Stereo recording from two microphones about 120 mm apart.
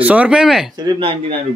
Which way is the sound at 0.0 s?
10° right (ahead or behind).